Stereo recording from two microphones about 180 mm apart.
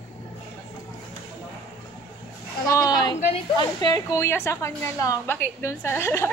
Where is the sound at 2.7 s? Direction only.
20° left (ahead or behind).